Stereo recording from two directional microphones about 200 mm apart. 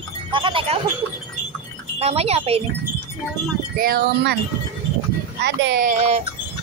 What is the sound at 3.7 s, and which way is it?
Speech, 50° right (ahead or behind).